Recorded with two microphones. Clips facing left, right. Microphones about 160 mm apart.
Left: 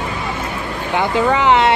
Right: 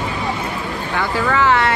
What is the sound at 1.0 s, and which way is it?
Speech, 20° left (ahead or behind).